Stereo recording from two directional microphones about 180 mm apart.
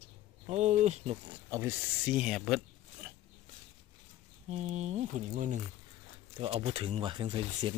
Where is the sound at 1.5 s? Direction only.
10° right (ahead or behind).